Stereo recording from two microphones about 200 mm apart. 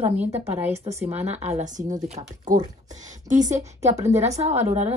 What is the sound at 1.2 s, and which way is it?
Speech, 35° right (ahead or behind).